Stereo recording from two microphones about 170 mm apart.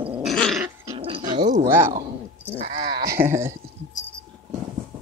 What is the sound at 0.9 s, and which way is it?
Dog, 30° right (ahead or behind).